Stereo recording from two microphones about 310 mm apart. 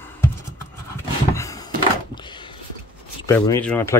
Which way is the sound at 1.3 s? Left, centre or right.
Centre.